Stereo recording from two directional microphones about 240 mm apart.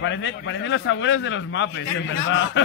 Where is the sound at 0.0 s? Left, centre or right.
Left.